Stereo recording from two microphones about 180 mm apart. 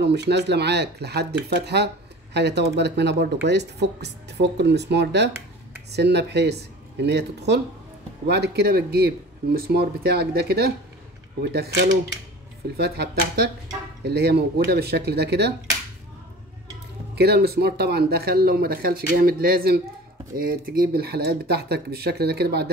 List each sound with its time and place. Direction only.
0.0 s speech: 70° right (ahead or behind)
17.1 s speech: 65° right (ahead or behind)